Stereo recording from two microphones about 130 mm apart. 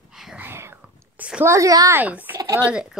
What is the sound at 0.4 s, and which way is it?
Whispering, 20° right (ahead or behind).